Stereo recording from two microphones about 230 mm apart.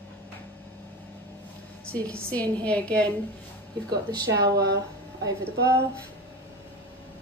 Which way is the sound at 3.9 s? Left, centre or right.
Centre.